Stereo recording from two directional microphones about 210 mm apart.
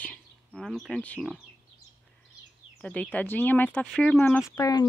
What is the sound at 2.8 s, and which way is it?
Speech, 5° left (ahead or behind).